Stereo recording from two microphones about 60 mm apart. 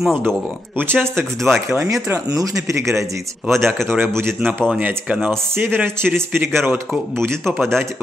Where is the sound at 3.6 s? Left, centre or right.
Right.